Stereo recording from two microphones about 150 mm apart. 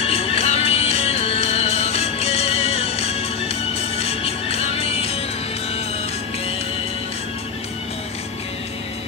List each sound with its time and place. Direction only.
0.0 s music: 45° left (ahead or behind)